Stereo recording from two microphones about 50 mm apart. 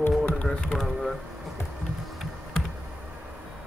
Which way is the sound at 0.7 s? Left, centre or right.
Centre.